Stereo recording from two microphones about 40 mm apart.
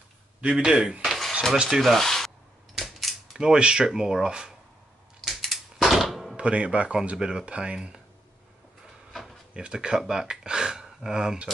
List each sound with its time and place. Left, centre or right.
0.4 s speech: right
1.0 s dishes: centre
1.8 s rub: centre
2.7 s typewriter: centre
3.3 s speech: right
5.2 s typewriter: centre
6.3 s speech: right
9.1 s drawer open or close: centre
9.5 s speech: right